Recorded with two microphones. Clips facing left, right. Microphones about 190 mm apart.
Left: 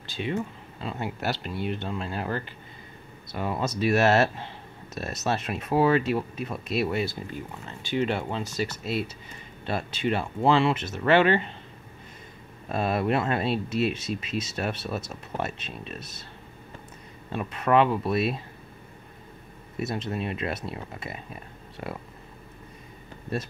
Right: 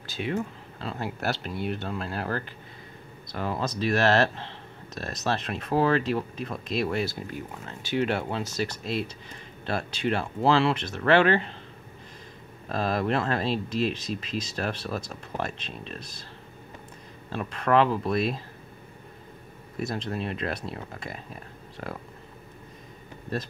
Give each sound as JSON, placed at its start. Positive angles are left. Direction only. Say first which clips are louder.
{"t": 0.0, "sound": "speech", "louder": "even", "side_deg": -5}
{"t": 12.6, "sound": "speech", "louder": "left 1 dB", "side_deg": 5}
{"t": 17.3, "sound": "speech", "louder": "left 1 dB", "side_deg": 5}
{"t": 19.8, "sound": "speech", "louder": "left 1 dB", "side_deg": 5}